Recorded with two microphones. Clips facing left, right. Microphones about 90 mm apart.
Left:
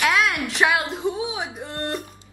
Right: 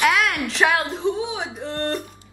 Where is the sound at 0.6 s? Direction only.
5° left (ahead or behind).